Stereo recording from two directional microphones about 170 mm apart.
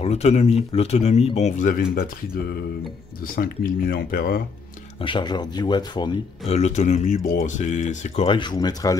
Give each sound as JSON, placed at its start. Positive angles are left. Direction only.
{"t": 0.0, "sound": "speech", "side_deg": 40}
{"t": 3.2, "sound": "speech", "side_deg": 55}
{"t": 5.0, "sound": "speech", "side_deg": 25}
{"t": 6.5, "sound": "speech", "side_deg": 40}
{"t": 8.3, "sound": "speech", "side_deg": 25}